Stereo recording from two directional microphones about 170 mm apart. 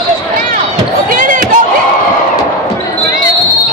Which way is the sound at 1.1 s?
55° right (ahead or behind).